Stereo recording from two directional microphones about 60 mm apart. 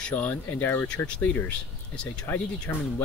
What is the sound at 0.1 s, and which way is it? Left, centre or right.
Speech, left.